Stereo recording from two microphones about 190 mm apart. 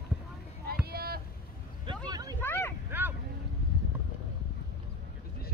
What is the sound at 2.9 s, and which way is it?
Boat, 10° right (ahead or behind).